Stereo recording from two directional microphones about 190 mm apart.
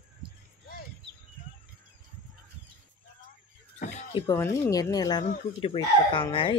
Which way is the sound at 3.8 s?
35° left (ahead or behind).